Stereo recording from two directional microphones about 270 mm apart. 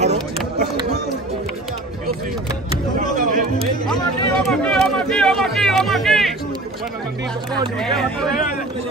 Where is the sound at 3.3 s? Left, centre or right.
Right.